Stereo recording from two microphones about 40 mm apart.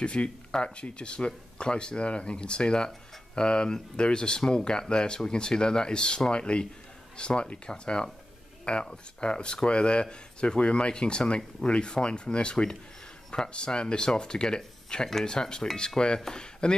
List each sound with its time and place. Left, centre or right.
0.0 s speech: left
0.5 s speech: centre
0.7 s speech: left